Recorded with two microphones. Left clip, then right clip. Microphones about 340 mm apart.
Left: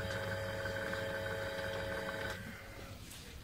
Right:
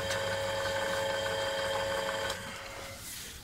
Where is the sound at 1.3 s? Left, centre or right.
Right.